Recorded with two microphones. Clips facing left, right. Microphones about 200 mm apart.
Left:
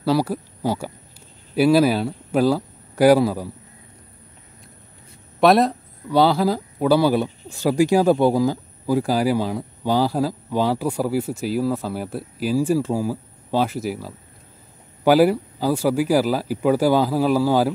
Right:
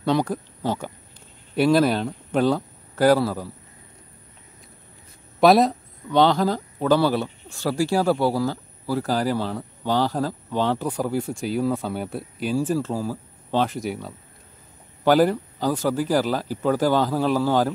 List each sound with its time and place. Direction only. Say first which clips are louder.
0.0 s speech: left 2 dB; 5° left (ahead or behind)
5.4 s speech: even; centre (ahead or behind)